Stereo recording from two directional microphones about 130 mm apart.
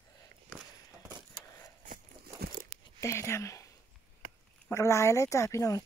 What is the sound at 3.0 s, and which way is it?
Speech, 20° left (ahead or behind).